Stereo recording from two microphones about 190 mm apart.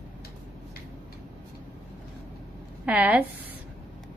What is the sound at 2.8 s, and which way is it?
Speech, 10° right (ahead or behind).